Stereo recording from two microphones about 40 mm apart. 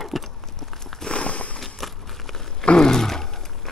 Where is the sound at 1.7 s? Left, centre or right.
Centre.